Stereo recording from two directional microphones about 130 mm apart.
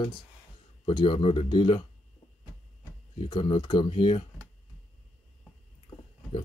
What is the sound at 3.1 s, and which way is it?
Speech, 40° left (ahead or behind).